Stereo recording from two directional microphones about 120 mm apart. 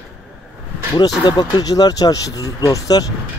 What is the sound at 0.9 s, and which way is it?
Speech, 35° left (ahead or behind).